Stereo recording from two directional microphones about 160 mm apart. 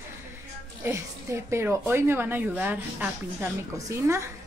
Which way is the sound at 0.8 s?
15° right (ahead or behind).